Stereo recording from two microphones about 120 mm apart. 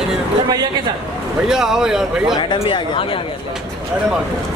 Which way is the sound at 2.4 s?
40° left (ahead or behind).